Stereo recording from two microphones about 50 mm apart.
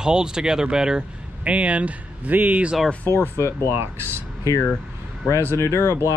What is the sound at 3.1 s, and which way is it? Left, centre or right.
Speech, left.